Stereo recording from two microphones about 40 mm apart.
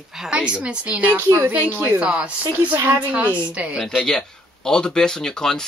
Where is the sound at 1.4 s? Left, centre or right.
Right.